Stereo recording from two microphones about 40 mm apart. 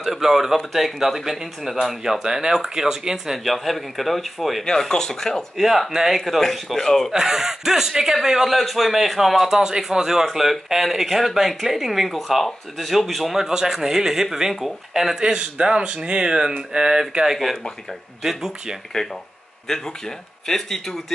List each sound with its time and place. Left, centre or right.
0.0 s speech: centre
3.4 s a man's voice: centre
4.6 s speech: centre
5.6 s a man's voice: centre
7.1 s speech: centre
8.5 s a man's voice: centre
15.1 s speech: centre
17.2 s a man's voice: centre
19.0 s speech: centre